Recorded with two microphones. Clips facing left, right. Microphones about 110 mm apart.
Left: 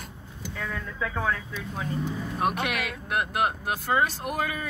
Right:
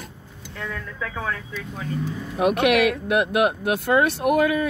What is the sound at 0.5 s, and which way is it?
Speech, 10° left (ahead or behind).